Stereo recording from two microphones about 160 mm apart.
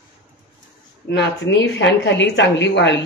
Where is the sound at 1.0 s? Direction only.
90° left.